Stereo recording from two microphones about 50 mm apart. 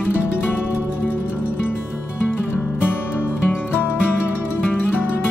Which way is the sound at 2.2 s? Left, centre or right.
Left.